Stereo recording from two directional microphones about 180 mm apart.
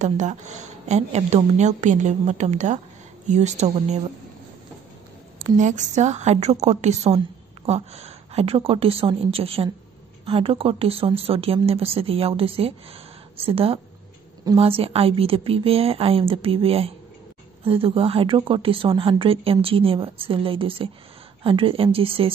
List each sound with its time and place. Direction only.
0.0 s speech: 40° right (ahead or behind)
5.6 s speech: 40° right (ahead or behind)